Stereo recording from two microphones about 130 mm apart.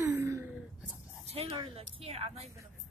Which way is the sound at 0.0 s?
25° right (ahead or behind).